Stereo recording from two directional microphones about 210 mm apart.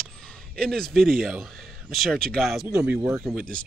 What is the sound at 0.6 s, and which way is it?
Speech, 5° left (ahead or behind).